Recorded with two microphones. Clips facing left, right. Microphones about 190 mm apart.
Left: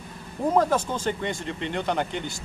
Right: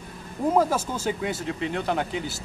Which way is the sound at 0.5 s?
5° right (ahead or behind).